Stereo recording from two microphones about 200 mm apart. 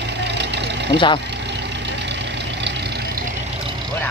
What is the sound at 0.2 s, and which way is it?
Vehicle, 60° right (ahead or behind).